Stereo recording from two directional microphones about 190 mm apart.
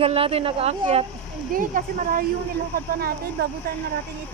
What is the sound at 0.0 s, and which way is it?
A woman's voice, 30° right (ahead or behind).